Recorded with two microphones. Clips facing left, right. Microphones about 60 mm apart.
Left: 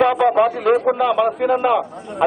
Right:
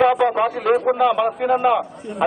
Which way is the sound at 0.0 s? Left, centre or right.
Centre.